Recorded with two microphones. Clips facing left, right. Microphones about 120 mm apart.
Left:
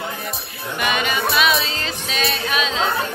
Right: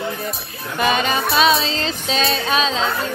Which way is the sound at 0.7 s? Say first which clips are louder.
Right 3 dB; 30° right (ahead or behind).